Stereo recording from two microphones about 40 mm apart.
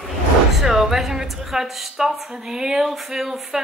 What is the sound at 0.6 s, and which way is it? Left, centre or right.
A woman's voice, centre.